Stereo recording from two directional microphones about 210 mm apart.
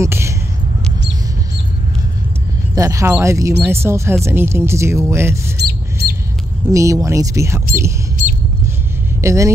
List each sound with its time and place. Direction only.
0.0 s a sound: 15° right (ahead or behind)
2.7 s speech: 15° right (ahead or behind)
5.6 s squawk: 50° right (ahead or behind)
6.7 s speech: 15° right (ahead or behind)
9.2 s speech: 15° right (ahead or behind)